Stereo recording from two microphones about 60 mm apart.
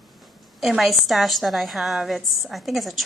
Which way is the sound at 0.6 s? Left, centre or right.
Centre.